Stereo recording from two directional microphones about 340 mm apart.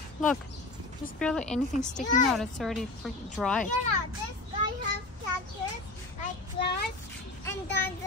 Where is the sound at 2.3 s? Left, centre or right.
Centre.